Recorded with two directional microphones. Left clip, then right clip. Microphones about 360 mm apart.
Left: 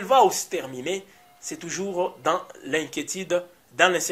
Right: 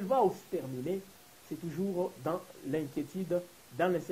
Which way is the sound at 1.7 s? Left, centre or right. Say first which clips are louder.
Left 8 dB; centre.